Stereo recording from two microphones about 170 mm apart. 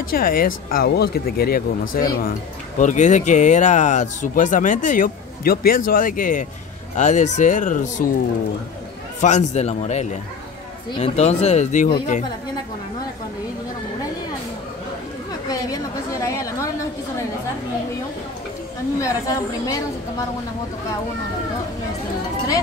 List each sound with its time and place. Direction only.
0.1 s speech: 60° left (ahead or behind)
2.8 s speech: 45° left (ahead or behind)
9.2 s speech: 45° left (ahead or behind)
15.5 s a woman's voice: 20° left (ahead or behind)
18.9 s a woman's voice: 20° left (ahead or behind)